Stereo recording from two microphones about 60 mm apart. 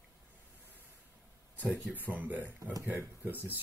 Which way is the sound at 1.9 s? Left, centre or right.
Right.